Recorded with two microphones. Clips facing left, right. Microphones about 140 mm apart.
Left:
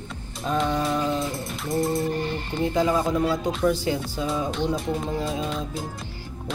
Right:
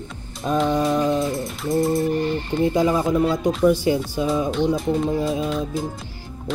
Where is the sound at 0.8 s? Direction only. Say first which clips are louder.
Right 5 dB; 20° right (ahead or behind).